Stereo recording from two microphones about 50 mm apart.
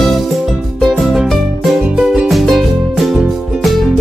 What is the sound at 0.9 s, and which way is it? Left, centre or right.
Music, centre.